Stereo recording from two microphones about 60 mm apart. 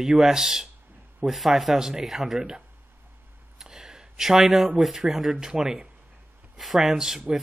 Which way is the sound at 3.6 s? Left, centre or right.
Centre.